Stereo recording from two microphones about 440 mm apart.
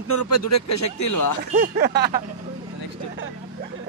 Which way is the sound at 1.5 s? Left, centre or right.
Centre.